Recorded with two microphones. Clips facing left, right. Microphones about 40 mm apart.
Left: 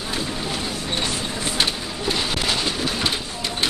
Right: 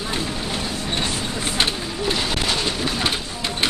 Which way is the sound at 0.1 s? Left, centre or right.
Centre.